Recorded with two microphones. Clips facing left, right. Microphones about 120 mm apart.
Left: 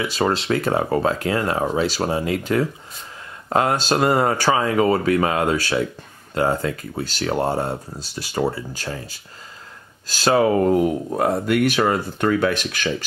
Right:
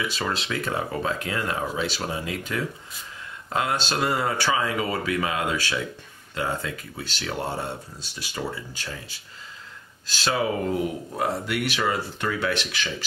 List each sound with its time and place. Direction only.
0.0 s speech: 40° left (ahead or behind)